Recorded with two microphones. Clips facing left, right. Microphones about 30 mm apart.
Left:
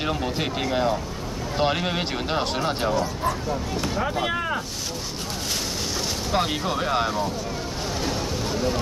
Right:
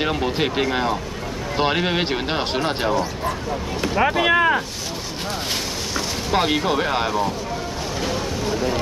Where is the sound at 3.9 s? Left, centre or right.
Right.